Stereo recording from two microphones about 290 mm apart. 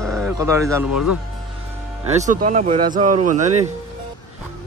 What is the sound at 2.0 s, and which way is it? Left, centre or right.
Speech, right.